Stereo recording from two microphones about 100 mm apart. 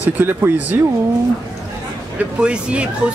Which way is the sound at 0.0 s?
20° right (ahead or behind).